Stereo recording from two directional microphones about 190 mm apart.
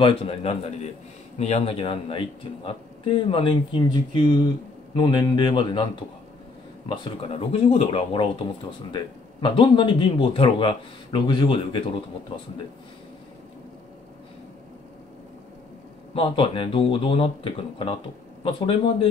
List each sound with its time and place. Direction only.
0.0 s speech: 30° left (ahead or behind)
6.9 s speech: 30° left (ahead or behind)
16.2 s speech: 25° left (ahead or behind)